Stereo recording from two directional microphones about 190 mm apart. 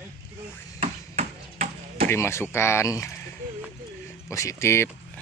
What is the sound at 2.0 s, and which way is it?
Speech, 15° left (ahead or behind).